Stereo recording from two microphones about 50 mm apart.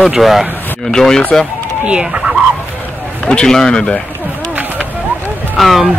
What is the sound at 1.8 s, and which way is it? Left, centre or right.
Speech, centre.